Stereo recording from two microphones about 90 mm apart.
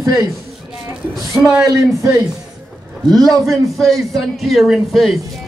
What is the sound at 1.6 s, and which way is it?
Speech, 35° right (ahead or behind).